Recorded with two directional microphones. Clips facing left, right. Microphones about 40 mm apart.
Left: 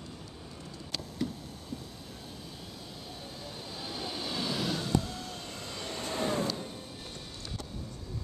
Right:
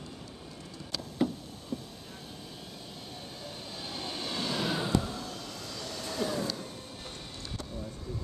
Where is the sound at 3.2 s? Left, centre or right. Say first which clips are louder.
Even; centre.